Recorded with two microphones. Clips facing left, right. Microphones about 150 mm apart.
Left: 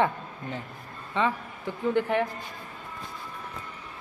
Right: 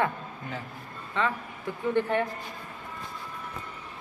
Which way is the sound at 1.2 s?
20° left (ahead or behind).